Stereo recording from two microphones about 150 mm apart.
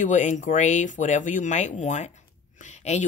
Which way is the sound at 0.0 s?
55° left (ahead or behind).